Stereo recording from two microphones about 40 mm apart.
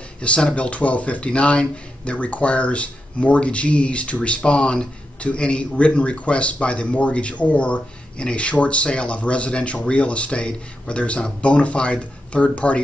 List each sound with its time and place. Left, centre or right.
0.2 s speech: left